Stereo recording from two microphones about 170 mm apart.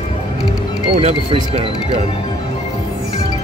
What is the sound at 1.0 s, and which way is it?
Speech, 35° right (ahead or behind).